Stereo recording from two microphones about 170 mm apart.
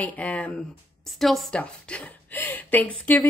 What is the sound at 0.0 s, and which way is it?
Speech, 10° left (ahead or behind).